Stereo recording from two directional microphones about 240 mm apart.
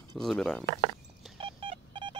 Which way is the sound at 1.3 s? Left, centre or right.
Right.